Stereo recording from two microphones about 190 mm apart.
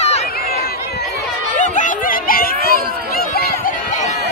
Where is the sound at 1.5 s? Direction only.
40° left (ahead or behind).